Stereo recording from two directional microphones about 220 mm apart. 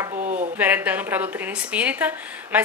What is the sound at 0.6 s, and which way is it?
Speech, 5° right (ahead or behind).